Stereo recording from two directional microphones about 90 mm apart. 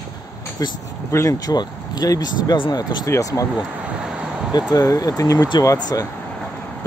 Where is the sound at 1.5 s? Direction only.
50° left (ahead or behind).